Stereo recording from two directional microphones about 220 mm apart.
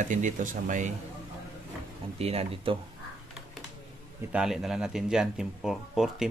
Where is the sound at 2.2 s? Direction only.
25° right (ahead or behind).